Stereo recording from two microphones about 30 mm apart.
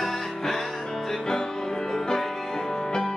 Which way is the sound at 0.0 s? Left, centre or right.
Centre.